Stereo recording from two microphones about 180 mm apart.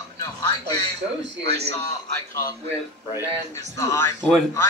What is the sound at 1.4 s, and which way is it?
Speech, 65° right (ahead or behind).